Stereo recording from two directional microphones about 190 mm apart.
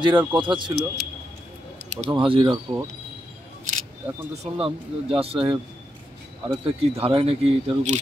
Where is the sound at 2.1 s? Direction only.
25° right (ahead or behind).